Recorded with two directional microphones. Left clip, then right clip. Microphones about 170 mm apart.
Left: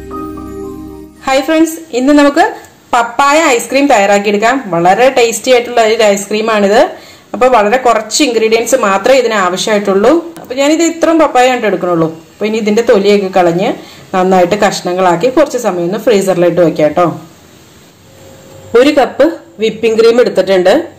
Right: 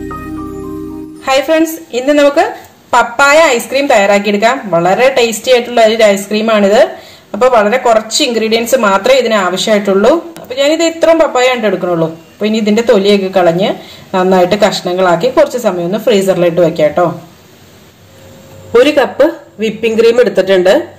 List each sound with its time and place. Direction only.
1.3 s speech: 10° left (ahead or behind)
3.3 s speech: 15° left (ahead or behind)
18.7 s speech: 10° left (ahead or behind)